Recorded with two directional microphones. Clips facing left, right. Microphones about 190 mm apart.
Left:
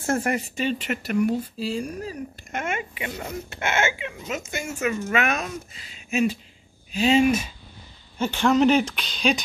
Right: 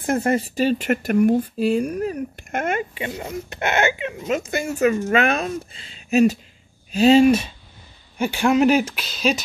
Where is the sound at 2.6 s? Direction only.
35° right (ahead or behind).